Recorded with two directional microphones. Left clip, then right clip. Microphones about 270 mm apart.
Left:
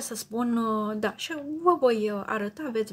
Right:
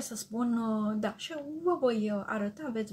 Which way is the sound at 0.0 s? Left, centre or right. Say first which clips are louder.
Left 4 dB; left.